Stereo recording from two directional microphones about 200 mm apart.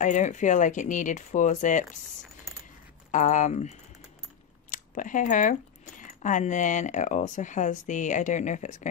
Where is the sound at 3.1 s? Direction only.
40° left (ahead or behind).